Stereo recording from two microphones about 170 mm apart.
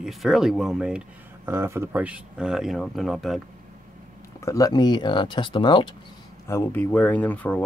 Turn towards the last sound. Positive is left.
turn(degrees=10)  # may be behind; listen again after turning